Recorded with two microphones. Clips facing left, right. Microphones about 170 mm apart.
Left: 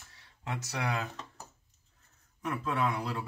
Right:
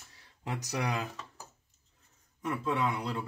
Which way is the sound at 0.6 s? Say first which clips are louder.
Right 1 dB; 15° right (ahead or behind).